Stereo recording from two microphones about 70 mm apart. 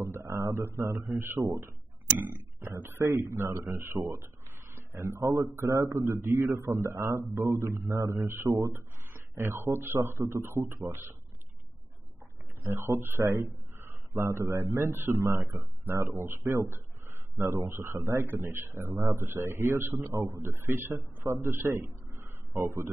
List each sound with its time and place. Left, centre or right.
0.0 s a sound: right
0.8 s a man's voice: right
2.1 s speech: right
3.0 s a man's voice: right
4.7 s a sound: right
5.2 s a man's voice: right
8.6 s a sound: right
9.3 s a man's voice: right
12.6 s a man's voice: right
13.2 s a man's voice: right
16.4 s a sound: right
17.4 s a man's voice: right